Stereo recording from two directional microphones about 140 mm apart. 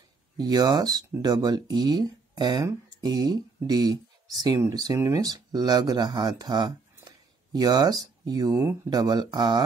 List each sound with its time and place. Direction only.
0.4 s speech: 30° right (ahead or behind)